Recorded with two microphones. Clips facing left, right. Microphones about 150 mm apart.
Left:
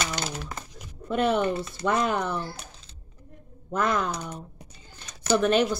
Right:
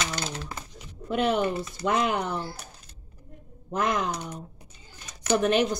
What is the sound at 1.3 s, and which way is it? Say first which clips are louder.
Speech: left 1 dB; 15° right (ahead or behind).